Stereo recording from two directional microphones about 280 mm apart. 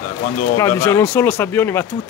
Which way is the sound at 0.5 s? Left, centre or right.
Centre.